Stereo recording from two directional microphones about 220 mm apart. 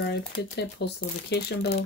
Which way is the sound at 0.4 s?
50° left (ahead or behind).